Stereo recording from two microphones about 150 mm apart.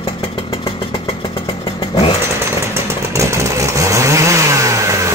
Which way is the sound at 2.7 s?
20° right (ahead or behind).